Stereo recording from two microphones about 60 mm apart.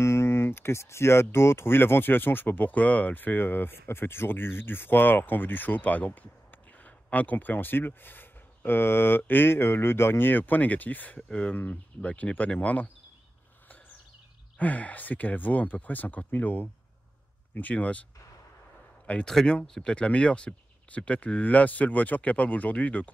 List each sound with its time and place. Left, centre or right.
0.0 s speech: left
14.6 s speech: left
19.2 s speech: centre